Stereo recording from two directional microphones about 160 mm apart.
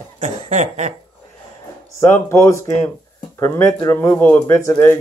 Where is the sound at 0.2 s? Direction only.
45° right (ahead or behind).